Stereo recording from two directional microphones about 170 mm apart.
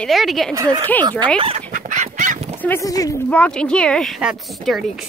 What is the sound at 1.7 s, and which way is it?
Duck, 50° right (ahead or behind).